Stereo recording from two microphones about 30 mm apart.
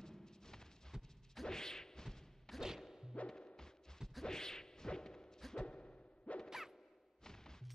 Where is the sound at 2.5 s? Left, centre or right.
Centre.